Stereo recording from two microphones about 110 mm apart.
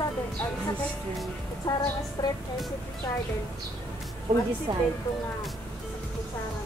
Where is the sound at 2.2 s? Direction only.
30° left (ahead or behind).